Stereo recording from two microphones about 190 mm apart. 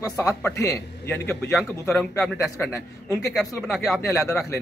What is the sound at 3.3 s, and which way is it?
Speech, centre (ahead or behind).